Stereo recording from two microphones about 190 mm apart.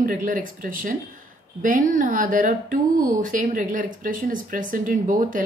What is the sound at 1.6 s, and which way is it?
Speech, 45° right (ahead or behind).